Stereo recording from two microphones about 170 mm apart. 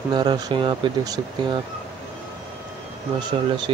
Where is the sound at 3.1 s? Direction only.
25° right (ahead or behind).